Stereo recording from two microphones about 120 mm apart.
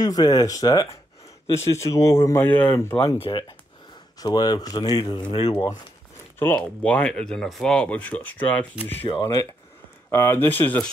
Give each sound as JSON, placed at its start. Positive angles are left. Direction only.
{"t": 0.0, "sound": "speech", "side_deg": 30}
{"t": 3.3, "sound": "speech", "side_deg": 40}
{"t": 6.4, "sound": "speech", "side_deg": 10}
{"t": 9.2, "sound": "speech", "side_deg": 30}